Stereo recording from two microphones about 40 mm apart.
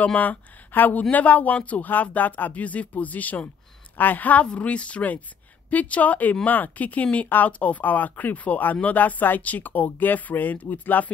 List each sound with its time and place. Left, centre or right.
0.0 s speech: left
4.5 s speech: left